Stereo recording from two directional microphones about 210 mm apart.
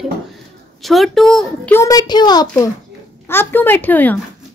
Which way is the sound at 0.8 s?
Centre (ahead or behind).